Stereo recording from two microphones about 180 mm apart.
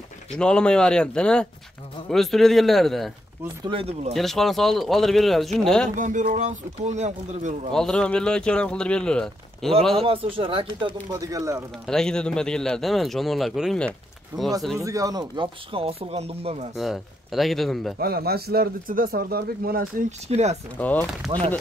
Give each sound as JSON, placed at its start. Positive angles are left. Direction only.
{"t": 0.3, "sound": "speech", "side_deg": 5}
{"t": 3.6, "sound": "speech", "side_deg": -30}
{"t": 4.1, "sound": "speech", "side_deg": 0}
{"t": 5.9, "sound": "speech", "side_deg": -45}
{"t": 7.7, "sound": "speech", "side_deg": 5}
{"t": 10.0, "sound": "speech", "side_deg": -30}
{"t": 11.8, "sound": "speech", "side_deg": 5}
{"t": 14.8, "sound": "speech", "side_deg": -20}
{"t": 16.7, "sound": "speech", "side_deg": 0}
{"t": 17.9, "sound": "speech", "side_deg": -60}
{"t": 20.8, "sound": "speech", "side_deg": 10}
{"t": 21.3, "sound": "speech", "side_deg": -30}